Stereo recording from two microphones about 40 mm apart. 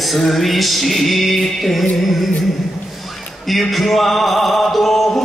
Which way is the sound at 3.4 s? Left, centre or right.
Centre.